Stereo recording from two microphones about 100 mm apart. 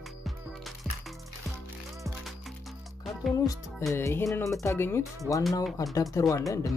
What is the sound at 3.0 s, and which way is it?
Music, centre (ahead or behind).